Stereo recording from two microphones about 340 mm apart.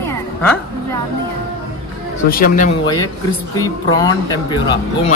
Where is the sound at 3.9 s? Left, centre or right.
Centre.